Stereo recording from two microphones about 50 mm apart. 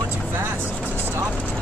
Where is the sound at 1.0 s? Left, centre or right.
Right.